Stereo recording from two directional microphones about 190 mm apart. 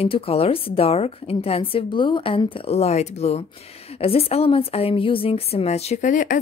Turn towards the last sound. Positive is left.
turn(degrees=45)  # may be behind; listen again after turning